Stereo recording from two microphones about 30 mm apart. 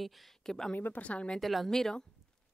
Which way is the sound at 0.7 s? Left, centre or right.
Left.